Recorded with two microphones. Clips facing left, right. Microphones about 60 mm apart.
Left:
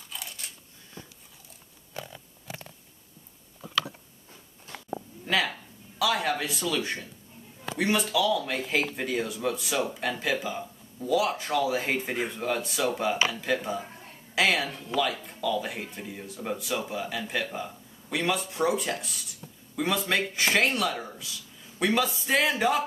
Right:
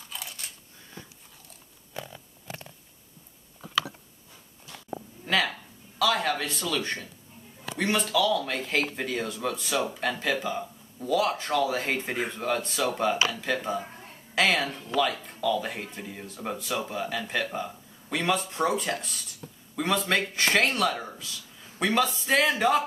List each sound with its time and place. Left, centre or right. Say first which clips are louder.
0.1 s camera: even; centre
4.7 s sheep: left 3 dB; left
5.2 s a sound: right 1 dB; centre
5.5 s speech: even; centre